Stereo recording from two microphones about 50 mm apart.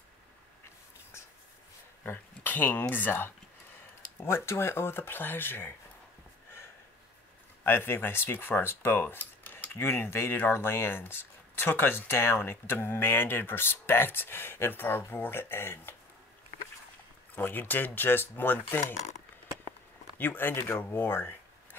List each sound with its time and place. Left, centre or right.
2.0 s speech: left
4.2 s speech: left
7.6 s speech: left
9.0 s a sound: left
9.8 s speech: left
17.4 s speech: left
20.2 s speech: left